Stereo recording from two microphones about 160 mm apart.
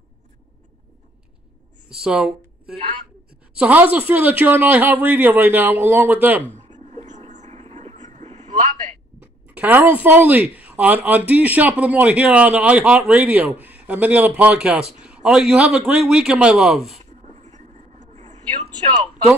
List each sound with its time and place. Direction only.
1.9 s speech: 5° right (ahead or behind)
6.5 s a sound: 45° right (ahead or behind)
9.2 s a man's voice: 10° right (ahead or behind)
17.3 s vehicle: 45° right (ahead or behind)